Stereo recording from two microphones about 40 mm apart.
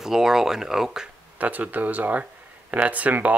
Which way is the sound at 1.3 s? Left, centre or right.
Right.